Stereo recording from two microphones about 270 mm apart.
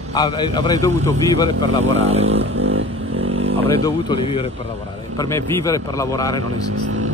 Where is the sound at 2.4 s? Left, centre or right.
Right.